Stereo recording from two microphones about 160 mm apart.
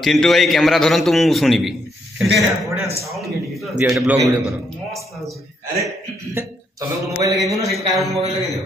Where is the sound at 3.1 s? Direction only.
Centre (ahead or behind).